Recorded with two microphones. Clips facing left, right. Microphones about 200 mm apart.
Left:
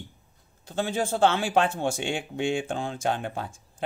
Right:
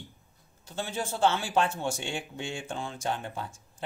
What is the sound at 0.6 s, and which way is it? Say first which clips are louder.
Speech: left 6 dB; 55° left (ahead or behind).